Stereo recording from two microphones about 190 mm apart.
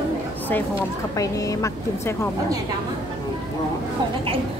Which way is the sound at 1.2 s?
15° left (ahead or behind).